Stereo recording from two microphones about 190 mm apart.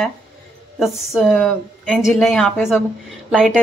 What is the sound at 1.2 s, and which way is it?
Speech, 5° left (ahead or behind).